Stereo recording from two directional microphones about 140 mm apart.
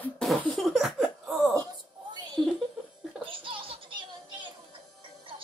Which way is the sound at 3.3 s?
40° right (ahead or behind).